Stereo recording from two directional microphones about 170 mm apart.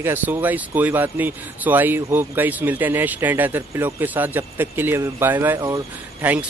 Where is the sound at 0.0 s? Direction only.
10° right (ahead or behind).